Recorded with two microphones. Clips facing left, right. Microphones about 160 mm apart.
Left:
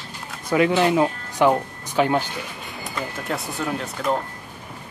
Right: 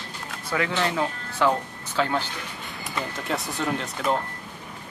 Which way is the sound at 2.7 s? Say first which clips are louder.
Right 1 dB; centre (ahead or behind).